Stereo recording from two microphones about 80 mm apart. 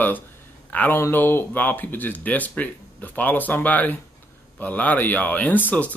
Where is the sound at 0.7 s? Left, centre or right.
Left.